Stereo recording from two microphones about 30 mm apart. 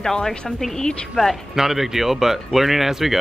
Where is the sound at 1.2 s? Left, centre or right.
Centre.